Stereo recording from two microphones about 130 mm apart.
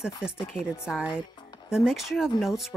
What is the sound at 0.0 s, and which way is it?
Speech, 5° right (ahead or behind).